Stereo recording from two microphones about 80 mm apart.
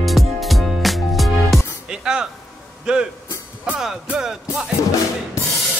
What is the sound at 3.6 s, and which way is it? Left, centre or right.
Music, centre.